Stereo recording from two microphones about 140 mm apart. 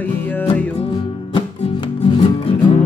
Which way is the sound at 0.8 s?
40° left (ahead or behind).